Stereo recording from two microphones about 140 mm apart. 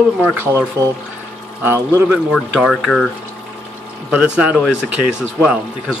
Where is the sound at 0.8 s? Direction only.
25° right (ahead or behind).